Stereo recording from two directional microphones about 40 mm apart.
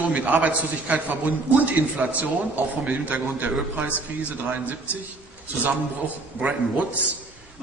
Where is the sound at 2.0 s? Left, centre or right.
Right.